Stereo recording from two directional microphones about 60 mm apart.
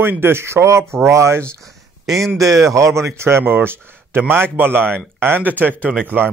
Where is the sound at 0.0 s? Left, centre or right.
Right.